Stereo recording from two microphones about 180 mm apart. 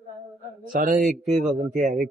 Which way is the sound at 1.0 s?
40° right (ahead or behind).